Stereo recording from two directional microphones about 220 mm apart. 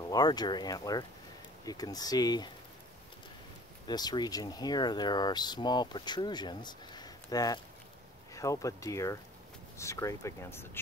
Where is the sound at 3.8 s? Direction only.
20° left (ahead or behind).